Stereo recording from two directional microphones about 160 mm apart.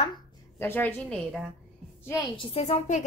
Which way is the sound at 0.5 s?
15° left (ahead or behind).